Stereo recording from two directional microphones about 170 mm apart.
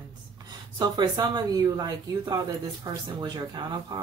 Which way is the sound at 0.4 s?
20° right (ahead or behind).